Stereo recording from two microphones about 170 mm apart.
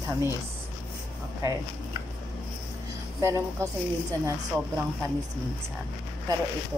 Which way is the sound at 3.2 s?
15° right (ahead or behind).